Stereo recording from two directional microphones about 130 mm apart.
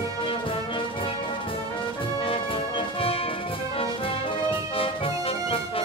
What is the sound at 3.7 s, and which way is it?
Brass instrument, 45° left (ahead or behind).